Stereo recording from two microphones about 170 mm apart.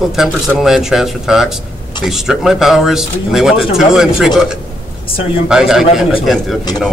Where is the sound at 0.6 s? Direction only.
Centre (ahead or behind).